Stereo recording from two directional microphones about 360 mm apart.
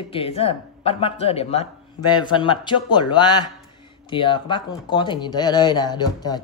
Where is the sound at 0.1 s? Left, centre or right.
Centre.